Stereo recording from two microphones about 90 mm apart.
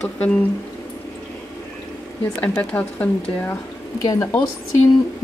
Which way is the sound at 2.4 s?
15° left (ahead or behind).